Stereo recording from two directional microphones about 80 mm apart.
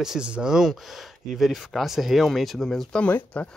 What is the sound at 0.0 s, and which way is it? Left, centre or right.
Speech, centre.